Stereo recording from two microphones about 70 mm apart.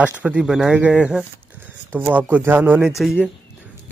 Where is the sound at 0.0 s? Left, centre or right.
Centre.